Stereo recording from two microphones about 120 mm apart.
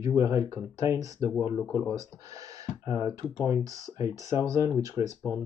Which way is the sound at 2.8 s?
50° left (ahead or behind).